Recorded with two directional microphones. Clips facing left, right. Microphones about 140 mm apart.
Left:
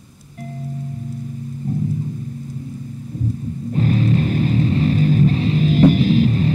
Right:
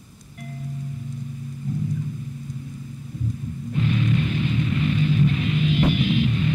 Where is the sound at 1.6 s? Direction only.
40° left (ahead or behind).